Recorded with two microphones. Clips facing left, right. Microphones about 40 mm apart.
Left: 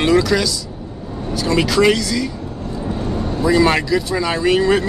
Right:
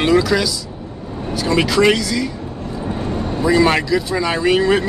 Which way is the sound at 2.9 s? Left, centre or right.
Right.